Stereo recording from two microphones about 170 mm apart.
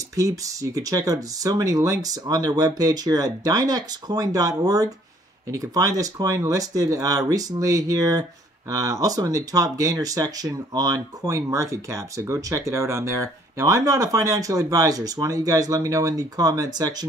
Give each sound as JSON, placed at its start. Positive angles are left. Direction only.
{"t": 0.1, "sound": "speech", "side_deg": -20}